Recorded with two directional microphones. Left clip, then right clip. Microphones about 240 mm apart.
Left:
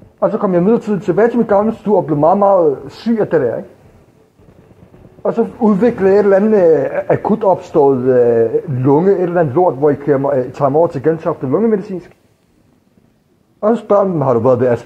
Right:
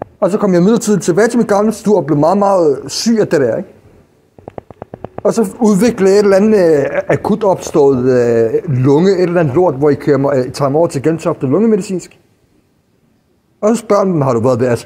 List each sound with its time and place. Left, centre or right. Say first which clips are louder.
0.2 s a man's voice: right 2 dB; right
5.2 s a man's voice: right 2 dB; right
13.6 s a man's voice: even; right